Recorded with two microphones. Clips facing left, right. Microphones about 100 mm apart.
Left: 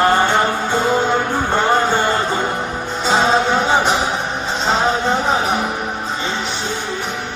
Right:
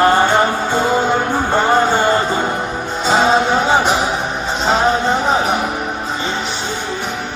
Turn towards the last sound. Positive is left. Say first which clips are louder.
# right 2 dB
turn(degrees=-5)  # may be behind; listen again after turning